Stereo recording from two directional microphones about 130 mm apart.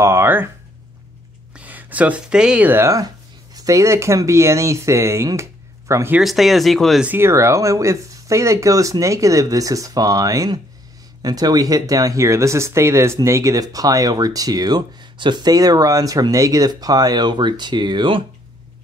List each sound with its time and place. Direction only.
0.0 s speech: 20° right (ahead or behind)
1.5 s speech: 10° right (ahead or behind)
6.1 s speech: centre (ahead or behind)
7.1 s speech: 20° right (ahead or behind); by 18.2 s 35° right (ahead or behind)